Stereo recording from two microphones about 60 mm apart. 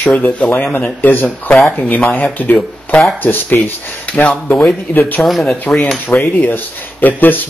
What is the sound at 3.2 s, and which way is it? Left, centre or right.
Speech, left.